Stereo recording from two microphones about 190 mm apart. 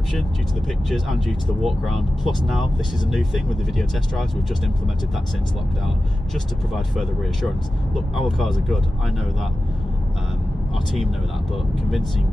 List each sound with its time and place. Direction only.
0.8 s speech: centre (ahead or behind)
6.3 s speech: centre (ahead or behind)